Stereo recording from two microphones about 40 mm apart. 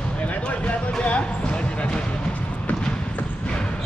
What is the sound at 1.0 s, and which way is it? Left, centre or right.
Basketball bounce, left.